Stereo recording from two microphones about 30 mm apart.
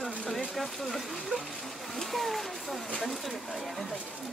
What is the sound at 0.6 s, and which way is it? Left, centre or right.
Speech, centre.